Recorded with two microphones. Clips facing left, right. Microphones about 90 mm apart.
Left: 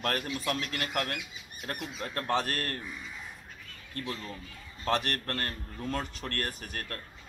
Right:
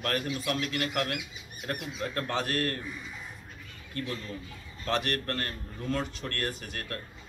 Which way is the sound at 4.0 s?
35° left (ahead or behind).